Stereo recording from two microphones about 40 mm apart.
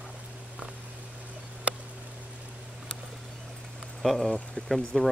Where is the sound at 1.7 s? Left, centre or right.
Right.